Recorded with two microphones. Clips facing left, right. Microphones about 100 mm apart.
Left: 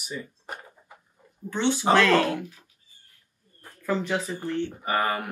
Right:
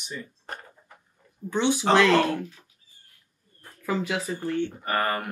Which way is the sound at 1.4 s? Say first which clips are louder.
Even; 15° right (ahead or behind).